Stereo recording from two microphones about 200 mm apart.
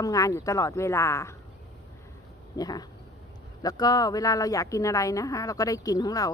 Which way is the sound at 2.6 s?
20° left (ahead or behind).